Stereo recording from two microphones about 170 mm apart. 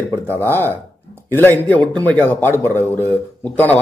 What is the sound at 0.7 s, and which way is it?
Speech, 10° left (ahead or behind).